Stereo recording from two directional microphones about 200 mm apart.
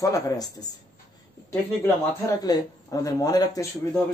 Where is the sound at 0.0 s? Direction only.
15° left (ahead or behind).